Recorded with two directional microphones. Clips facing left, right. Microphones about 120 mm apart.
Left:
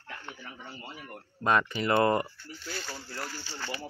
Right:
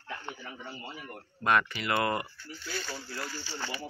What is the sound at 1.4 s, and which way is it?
Speech, 25° left (ahead or behind).